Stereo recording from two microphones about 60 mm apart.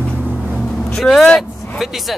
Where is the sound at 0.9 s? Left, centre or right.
Centre.